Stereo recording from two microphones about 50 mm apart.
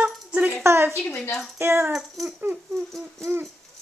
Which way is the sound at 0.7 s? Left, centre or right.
Right.